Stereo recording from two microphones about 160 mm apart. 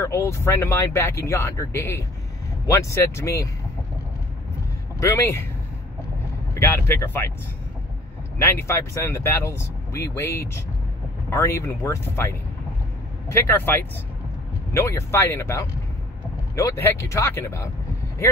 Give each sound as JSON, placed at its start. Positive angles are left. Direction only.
{"t": 0.0, "sound": "speech", "side_deg": 15}
{"t": 5.0, "sound": "speech", "side_deg": 15}
{"t": 6.5, "sound": "speech", "side_deg": 15}
{"t": 8.4, "sound": "speech", "side_deg": 15}